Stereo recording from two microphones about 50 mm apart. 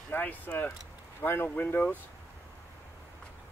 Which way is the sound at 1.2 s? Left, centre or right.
Left.